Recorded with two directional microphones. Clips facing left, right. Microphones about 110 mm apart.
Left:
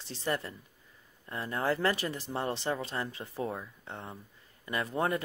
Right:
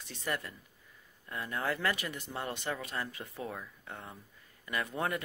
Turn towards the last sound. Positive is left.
turn(degrees=30)  # may be behind; listen again after turning